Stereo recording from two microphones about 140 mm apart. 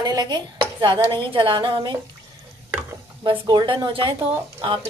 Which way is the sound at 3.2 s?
35° right (ahead or behind).